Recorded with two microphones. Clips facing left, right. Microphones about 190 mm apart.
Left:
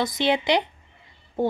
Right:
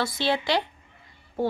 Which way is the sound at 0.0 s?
20° left (ahead or behind).